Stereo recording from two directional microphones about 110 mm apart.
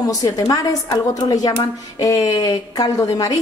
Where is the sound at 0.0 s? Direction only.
35° left (ahead or behind).